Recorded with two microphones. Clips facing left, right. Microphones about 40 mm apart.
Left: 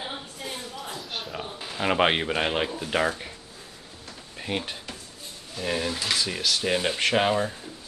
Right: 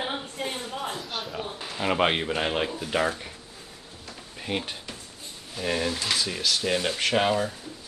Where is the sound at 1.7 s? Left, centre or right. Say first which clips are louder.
Left 2 dB; centre.